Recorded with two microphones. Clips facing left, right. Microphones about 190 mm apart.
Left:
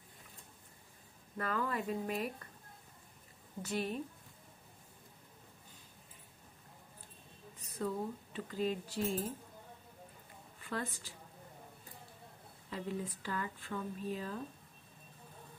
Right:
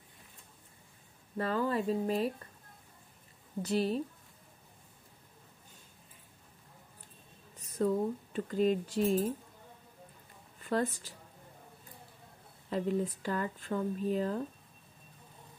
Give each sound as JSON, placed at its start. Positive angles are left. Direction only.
{"t": 1.3, "sound": "speech", "side_deg": -30}
{"t": 3.6, "sound": "speech", "side_deg": -30}
{"t": 7.7, "sound": "speech", "side_deg": -40}
{"t": 10.6, "sound": "a woman's voice", "side_deg": -45}
{"t": 12.6, "sound": "speech", "side_deg": -45}